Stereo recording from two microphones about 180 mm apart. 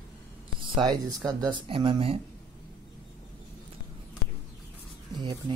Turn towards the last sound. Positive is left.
turn(degrees=-25)  # may be behind; listen again after turning